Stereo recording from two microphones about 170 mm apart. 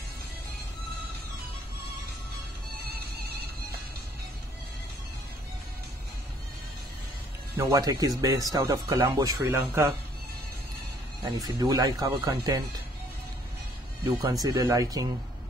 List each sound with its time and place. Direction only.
7.5 s speech: 20° right (ahead or behind)
11.2 s speech: 20° right (ahead or behind)
14.0 s speech: 20° right (ahead or behind)